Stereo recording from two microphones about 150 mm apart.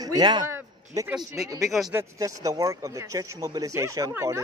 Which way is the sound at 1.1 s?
5° right (ahead or behind).